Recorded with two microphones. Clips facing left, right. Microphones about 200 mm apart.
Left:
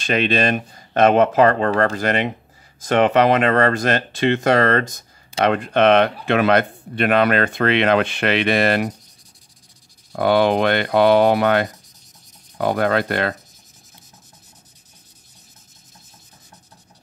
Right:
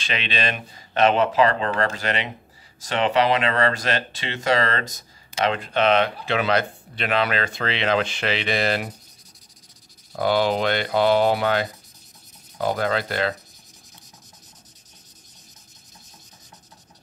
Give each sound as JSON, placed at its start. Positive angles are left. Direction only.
{"t": 0.0, "sound": "speech", "side_deg": 45}
{"t": 10.1, "sound": "speech", "side_deg": 55}